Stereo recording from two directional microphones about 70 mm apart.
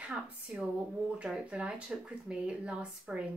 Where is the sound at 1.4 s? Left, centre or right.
Centre.